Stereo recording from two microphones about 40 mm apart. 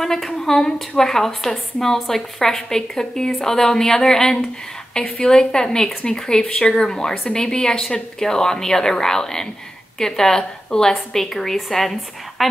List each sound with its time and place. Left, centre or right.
0.0 s speech: centre
4.9 s speech: left; by 12.4 s centre